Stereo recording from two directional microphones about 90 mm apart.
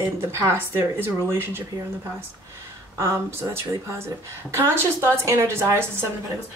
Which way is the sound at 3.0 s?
35° right (ahead or behind).